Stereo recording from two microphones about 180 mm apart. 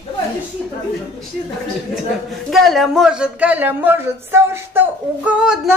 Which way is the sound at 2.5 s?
Centre (ahead or behind).